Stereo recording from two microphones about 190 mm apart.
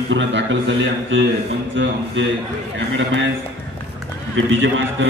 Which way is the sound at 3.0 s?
75° right (ahead or behind).